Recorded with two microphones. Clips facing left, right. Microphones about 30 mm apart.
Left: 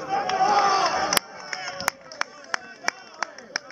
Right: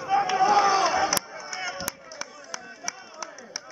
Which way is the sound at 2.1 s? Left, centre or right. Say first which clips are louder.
Left 8 dB; left.